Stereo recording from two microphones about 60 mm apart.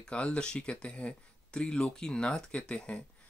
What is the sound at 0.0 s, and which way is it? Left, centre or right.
Speech, centre.